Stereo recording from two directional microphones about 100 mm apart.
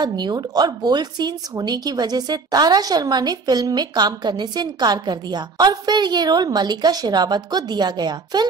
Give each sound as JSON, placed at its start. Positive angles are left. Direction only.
{"t": 0.0, "sound": "a woman's voice", "side_deg": -45}